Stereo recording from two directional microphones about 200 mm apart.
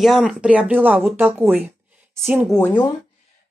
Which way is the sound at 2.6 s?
10° left (ahead or behind).